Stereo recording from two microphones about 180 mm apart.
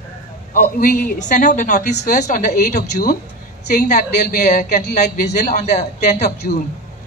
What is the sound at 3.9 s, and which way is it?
A man's voice, 50° left (ahead or behind).